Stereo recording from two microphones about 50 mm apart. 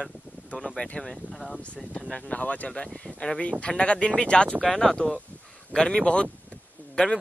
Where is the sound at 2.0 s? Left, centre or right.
Left.